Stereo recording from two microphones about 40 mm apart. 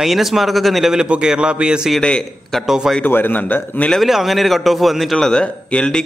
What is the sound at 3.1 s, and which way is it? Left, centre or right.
Speech, left.